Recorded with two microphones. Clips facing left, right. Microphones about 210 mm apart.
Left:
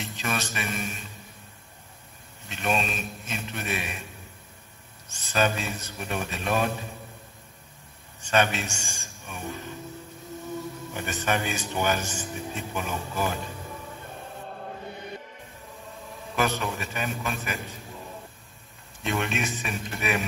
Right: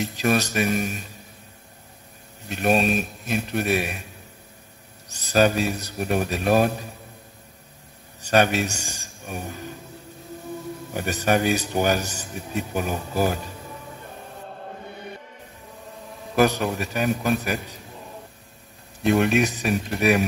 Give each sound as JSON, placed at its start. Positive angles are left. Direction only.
{"t": 0.0, "sound": "a man's voice", "side_deg": -40}
{"t": 2.4, "sound": "a man's voice", "side_deg": -40}
{"t": 8.2, "sound": "a man's voice", "side_deg": -40}
{"t": 10.9, "sound": "a man's voice", "side_deg": -40}
{"t": 16.3, "sound": "a man's voice", "side_deg": -40}
{"t": 19.0, "sound": "a man's voice", "side_deg": -40}